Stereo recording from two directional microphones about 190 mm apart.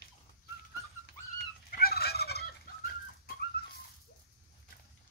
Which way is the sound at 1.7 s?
55° left (ahead or behind).